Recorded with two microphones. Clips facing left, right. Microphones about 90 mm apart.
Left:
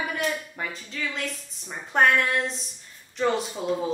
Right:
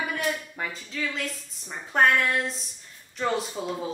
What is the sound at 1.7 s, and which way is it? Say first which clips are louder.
A woman's voice: left 1 dB; centre (ahead or behind).